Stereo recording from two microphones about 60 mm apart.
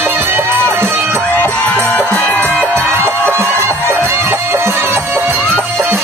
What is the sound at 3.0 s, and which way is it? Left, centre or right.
Music, right.